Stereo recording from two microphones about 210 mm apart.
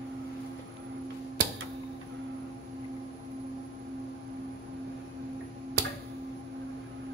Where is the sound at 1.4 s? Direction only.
55° right (ahead or behind).